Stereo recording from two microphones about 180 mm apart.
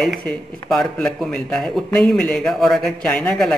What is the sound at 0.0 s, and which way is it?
Speech, centre (ahead or behind).